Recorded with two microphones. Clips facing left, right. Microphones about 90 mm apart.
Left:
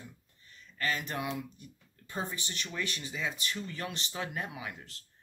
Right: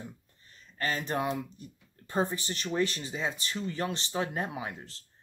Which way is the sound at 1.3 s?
40° right (ahead or behind).